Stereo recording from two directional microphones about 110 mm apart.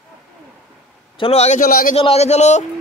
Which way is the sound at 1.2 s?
70° left (ahead or behind).